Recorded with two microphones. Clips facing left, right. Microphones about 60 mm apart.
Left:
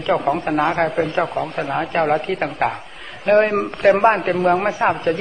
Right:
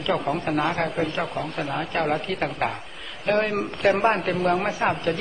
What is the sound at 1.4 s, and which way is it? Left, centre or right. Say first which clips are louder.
Speech: left 6 dB; left.